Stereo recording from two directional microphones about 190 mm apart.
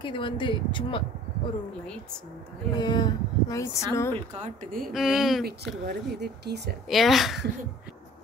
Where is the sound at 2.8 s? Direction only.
25° left (ahead or behind).